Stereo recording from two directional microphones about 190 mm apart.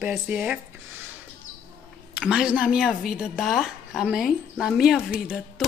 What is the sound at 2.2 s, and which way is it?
A woman's voice, 5° right (ahead or behind).